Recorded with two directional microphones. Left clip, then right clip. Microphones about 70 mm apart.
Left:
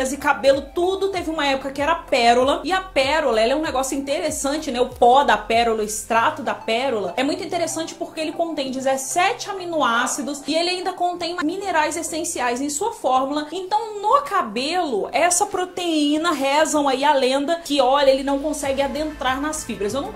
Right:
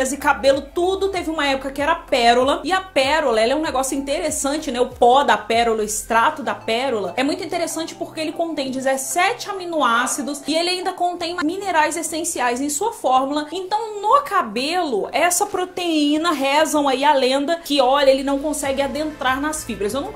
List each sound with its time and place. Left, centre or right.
0.0 s a woman's voice: right